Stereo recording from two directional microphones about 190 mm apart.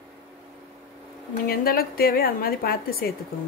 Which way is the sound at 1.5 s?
50° left (ahead or behind).